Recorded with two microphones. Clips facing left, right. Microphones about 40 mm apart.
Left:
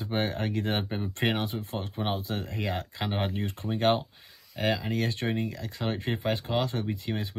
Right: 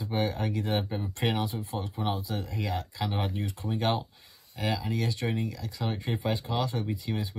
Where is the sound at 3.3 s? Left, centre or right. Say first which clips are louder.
Left 1 dB; left.